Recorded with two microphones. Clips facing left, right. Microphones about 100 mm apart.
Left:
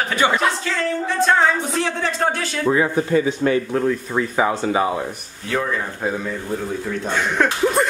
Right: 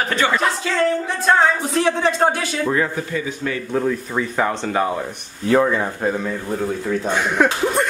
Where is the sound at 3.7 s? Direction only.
Centre (ahead or behind).